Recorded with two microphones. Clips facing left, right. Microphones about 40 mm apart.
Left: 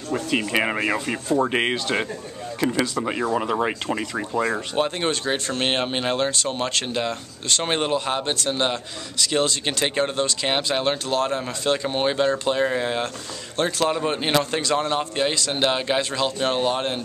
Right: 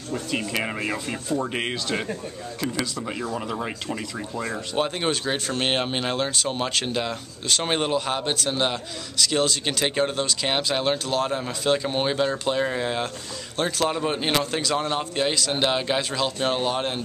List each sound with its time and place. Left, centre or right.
0.1 s speech: left
4.2 s speech: left
4.7 s speech: centre